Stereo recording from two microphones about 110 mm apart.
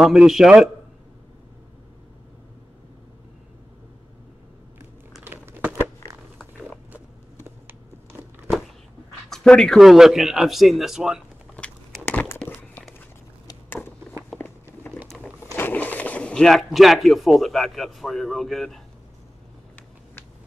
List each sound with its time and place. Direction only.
0.0 s speech: 5° right (ahead or behind)
5.2 s crumpling: 20° right (ahead or behind)
7.4 s a sound: 20° right (ahead or behind)
9.3 s speech: 5° left (ahead or behind)
12.0 s crumpling: 15° left (ahead or behind)
13.7 s a sound: 20° left (ahead or behind)
14.3 s walk: centre (ahead or behind)
15.0 s a sound: centre (ahead or behind)
15.5 s speech: 15° left (ahead or behind)